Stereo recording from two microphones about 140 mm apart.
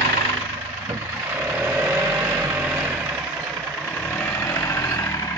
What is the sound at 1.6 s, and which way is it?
Vehicle, 10° right (ahead or behind).